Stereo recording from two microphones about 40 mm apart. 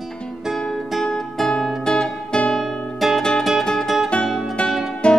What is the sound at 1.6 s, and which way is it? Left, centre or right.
Music, centre.